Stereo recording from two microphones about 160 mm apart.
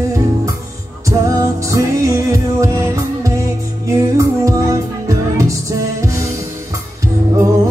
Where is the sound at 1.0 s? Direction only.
20° right (ahead or behind).